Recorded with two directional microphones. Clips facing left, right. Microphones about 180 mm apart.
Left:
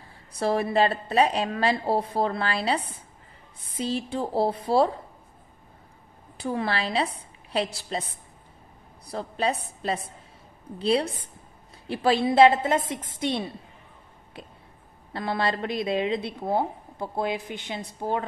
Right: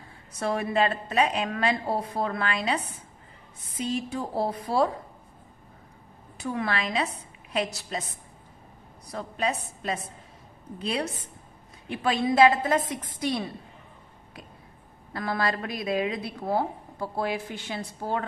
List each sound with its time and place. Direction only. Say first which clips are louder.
0.4 s a woman's voice: left 3 dB; 35° left (ahead or behind)
6.3 s a woman's voice: left 2 dB; 30° left (ahead or behind)
9.1 s a woman's voice: left 2 dB; 30° left (ahead or behind)
14.3 s a sound: left 3 dB; 30° left (ahead or behind)
15.1 s a woman's voice: left 1 dB; 25° left (ahead or behind)